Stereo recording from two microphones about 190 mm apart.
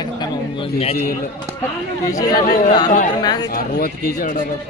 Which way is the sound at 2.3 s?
50° left (ahead or behind).